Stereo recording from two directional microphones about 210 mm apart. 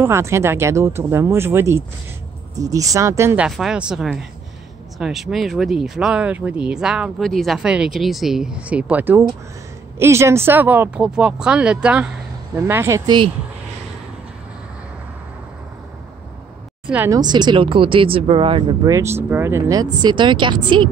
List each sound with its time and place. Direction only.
0.0 s speech: 10° right (ahead or behind)
16.9 s speech: 10° right (ahead or behind)
17.2 s speech: 20° right (ahead or behind)